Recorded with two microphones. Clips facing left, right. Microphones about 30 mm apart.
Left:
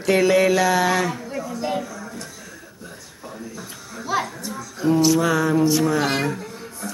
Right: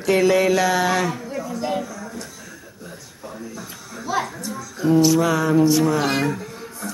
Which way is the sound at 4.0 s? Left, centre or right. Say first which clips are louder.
Even; centre.